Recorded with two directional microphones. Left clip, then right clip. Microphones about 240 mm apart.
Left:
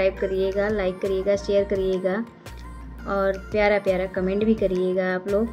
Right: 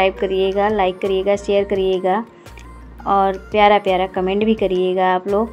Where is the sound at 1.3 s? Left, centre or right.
Left.